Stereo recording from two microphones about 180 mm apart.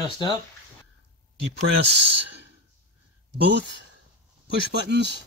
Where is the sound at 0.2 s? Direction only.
25° left (ahead or behind).